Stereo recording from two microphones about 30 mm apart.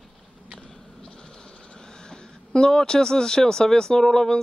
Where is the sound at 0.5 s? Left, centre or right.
Centre.